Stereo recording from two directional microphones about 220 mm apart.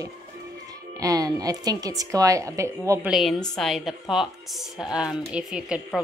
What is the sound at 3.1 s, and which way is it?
A woman's voice, centre (ahead or behind).